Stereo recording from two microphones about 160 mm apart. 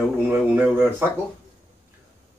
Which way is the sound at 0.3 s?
15° right (ahead or behind).